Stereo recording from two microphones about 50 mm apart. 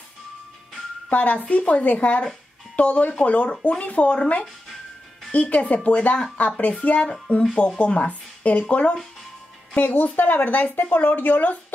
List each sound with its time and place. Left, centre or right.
1.1 s speech: left
9.8 s speech: left